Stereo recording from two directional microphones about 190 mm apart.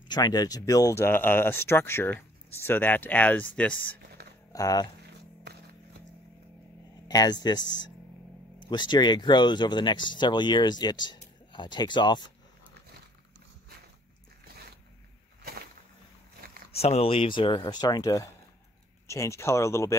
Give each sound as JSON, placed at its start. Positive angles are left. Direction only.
{"t": 0.1, "sound": "speech", "side_deg": 20}
{"t": 4.5, "sound": "speech", "side_deg": 20}
{"t": 7.1, "sound": "speech", "side_deg": 20}
{"t": 16.7, "sound": "speech", "side_deg": 35}